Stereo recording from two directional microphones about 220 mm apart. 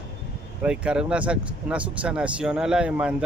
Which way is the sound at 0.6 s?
5° right (ahead or behind).